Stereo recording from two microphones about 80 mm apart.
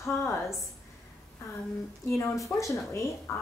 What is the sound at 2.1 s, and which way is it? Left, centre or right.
Speech, left.